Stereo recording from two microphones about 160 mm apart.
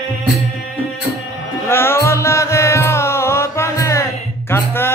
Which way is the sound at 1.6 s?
15° left (ahead or behind).